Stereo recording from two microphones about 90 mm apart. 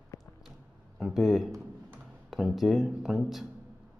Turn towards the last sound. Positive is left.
turn(degrees=-5)  # may be behind; listen again after turning